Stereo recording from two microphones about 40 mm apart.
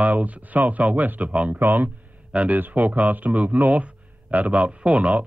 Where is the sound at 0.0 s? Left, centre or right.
Right.